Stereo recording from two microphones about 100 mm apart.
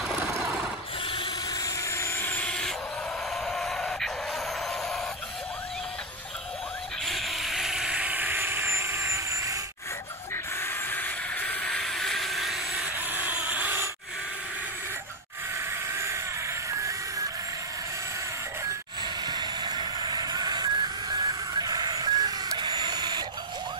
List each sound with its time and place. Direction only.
1.6 s vehicle: 30° left (ahead or behind)
3.4 s a sound: 5° left (ahead or behind)
7.1 s vehicle: centre (ahead or behind); by 9.6 s 35° right (ahead or behind)
10.3 s hiss: 20° left (ahead or behind); by 12.8 s centre (ahead or behind)
12.9 s a sound: 15° right (ahead or behind)
15.9 s vehicle: 25° right (ahead or behind)
19.2 s vehicle: 45° right (ahead or behind)